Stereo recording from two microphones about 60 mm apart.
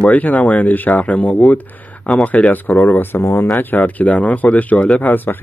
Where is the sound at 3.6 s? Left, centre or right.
Left.